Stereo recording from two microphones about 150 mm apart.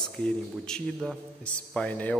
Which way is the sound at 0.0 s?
5° left (ahead or behind).